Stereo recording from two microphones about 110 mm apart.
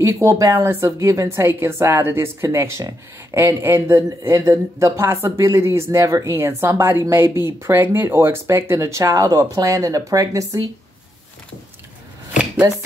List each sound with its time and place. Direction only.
0.0 s speech: 25° right (ahead or behind)